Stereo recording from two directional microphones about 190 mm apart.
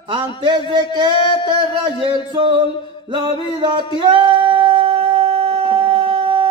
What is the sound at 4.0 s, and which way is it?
Music, 25° right (ahead or behind).